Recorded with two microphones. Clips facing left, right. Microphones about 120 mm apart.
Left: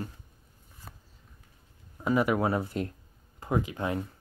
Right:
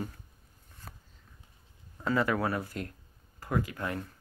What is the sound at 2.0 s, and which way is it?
Speech, 15° left (ahead or behind).